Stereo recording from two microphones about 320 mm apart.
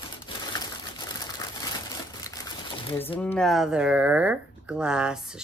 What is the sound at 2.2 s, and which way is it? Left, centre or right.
Crumpling, centre.